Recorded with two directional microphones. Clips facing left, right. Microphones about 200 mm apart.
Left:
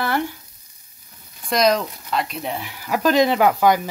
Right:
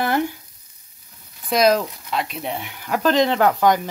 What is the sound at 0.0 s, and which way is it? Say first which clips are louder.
Frying: right 2 dB; 20° right (ahead or behind).